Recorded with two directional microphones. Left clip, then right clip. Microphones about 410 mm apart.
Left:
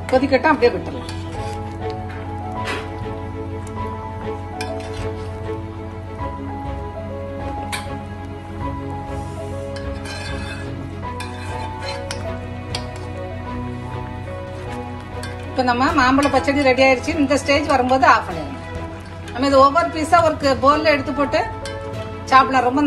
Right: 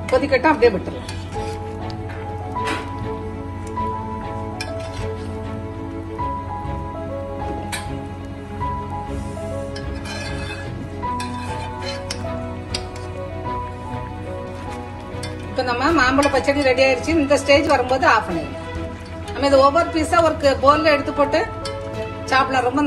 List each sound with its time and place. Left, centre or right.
0.1 s a woman's voice: centre
15.5 s a woman's voice: centre
19.3 s a woman's voice: centre